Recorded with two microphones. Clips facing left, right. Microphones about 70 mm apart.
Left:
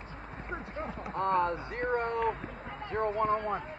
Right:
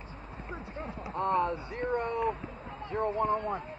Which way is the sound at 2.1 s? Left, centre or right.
Left.